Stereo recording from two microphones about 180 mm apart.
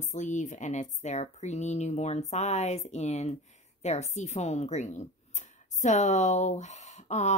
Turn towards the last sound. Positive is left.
turn(degrees=40)  # may be behind; listen again after turning